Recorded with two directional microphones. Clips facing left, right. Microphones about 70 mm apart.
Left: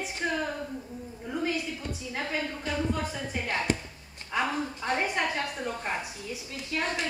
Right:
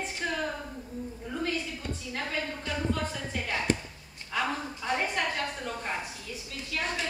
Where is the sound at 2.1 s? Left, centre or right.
Centre.